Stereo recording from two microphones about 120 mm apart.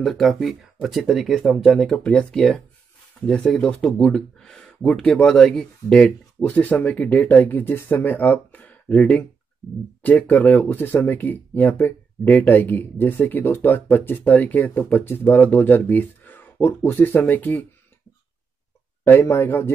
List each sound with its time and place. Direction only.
0.0 s speech: centre (ahead or behind)
19.0 s speech: 20° left (ahead or behind)